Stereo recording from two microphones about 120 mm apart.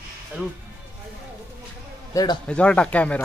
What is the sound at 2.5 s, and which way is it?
Speech, 10° left (ahead or behind).